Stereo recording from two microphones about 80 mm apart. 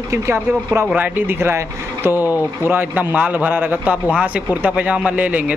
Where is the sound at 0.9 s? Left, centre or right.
Right.